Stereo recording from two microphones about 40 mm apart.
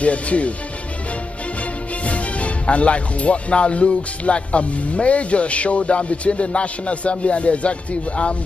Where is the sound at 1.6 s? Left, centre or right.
Left.